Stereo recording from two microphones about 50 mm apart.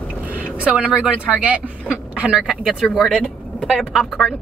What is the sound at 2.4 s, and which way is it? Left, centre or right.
Speech, centre.